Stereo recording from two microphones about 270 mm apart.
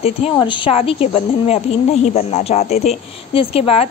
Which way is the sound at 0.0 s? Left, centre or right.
Centre.